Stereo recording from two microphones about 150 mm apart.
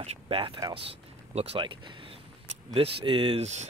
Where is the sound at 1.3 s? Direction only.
40° right (ahead or behind).